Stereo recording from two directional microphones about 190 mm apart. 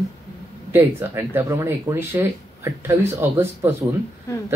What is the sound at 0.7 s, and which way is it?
Speech, 10° right (ahead or behind).